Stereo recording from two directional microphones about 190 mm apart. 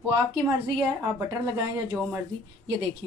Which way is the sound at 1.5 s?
15° right (ahead or behind).